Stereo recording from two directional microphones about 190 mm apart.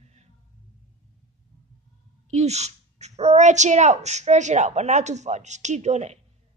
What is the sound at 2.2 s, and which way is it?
A woman's voice, 35° right (ahead or behind).